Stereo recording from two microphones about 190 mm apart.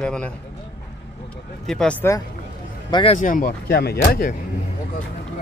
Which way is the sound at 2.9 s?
30° left (ahead or behind).